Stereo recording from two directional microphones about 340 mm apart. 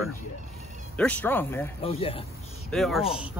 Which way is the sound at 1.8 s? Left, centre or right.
Centre.